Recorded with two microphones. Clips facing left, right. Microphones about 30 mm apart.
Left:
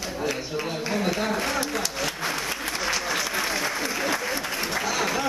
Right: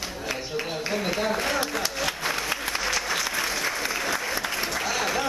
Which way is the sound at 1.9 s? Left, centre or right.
Centre.